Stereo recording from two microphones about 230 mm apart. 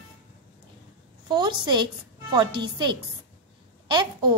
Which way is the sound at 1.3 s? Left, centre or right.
Centre.